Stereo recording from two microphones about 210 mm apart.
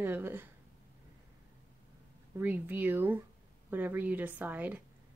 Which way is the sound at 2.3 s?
10° right (ahead or behind).